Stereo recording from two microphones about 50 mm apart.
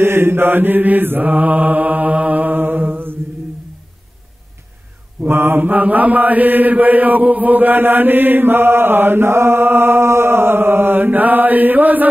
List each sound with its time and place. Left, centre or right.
0.0 s mantra: right
5.3 s mantra: right
5.7 s chant: right